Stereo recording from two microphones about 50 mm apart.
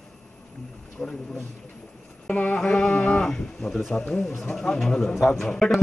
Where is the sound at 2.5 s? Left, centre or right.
Centre.